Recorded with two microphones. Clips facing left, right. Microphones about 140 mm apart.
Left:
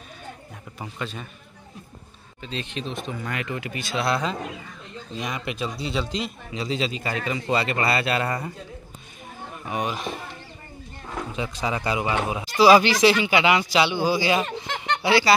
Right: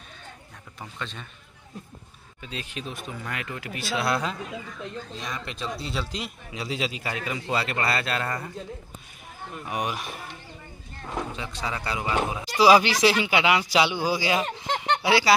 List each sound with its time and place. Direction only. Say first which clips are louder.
0.7 s speech: left 4 dB; 5° left (ahead or behind)
2.4 s speech: left 4 dB; 5° right (ahead or behind)
5.2 s speech: left 7 dB; 10° left (ahead or behind)
5.8 s speech: left 5 dB; centre (ahead or behind)
9.7 s speech: left 3 dB; 10° right (ahead or behind)
11.3 s speech: left 5 dB; 15° left (ahead or behind)
12.4 s speech: left 2 dB; 10° right (ahead or behind)
15.0 s honk: left 3 dB; 5° right (ahead or behind)